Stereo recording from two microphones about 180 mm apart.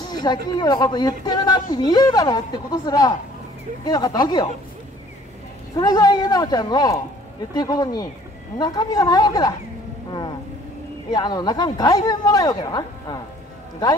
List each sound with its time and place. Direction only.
0.2 s a woman's voice: 25° left (ahead or behind)
5.8 s a woman's voice: 20° left (ahead or behind)
11.1 s a woman's voice: 20° left (ahead or behind)